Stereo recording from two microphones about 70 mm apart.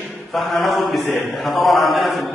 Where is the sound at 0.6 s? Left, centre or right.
Centre.